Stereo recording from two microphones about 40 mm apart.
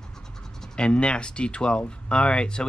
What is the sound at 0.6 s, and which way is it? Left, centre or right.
Speech, left.